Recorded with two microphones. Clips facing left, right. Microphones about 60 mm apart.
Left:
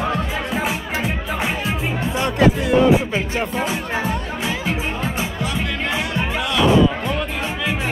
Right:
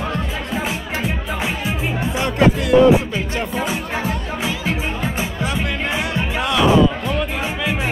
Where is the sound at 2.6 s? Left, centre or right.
Left.